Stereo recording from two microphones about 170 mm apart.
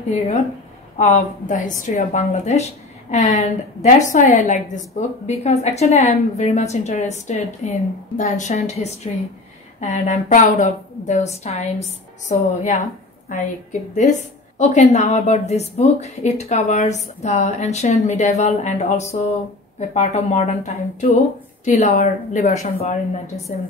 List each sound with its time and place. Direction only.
0.9 s a woman's voice: 45° left (ahead or behind)